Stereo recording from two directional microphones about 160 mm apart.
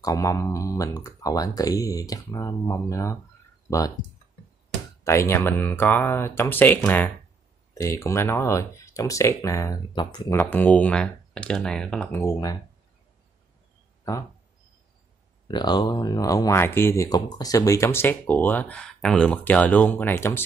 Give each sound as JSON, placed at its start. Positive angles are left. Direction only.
{"t": 0.0, "sound": "speech", "side_deg": 20}
{"t": 5.0, "sound": "speech", "side_deg": 15}
{"t": 10.3, "sound": "speech", "side_deg": 10}
{"t": 14.1, "sound": "speech", "side_deg": 20}
{"t": 15.4, "sound": "speech", "side_deg": 25}